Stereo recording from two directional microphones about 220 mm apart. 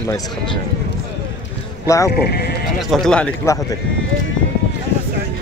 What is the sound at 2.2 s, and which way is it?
Speech, 45° left (ahead or behind).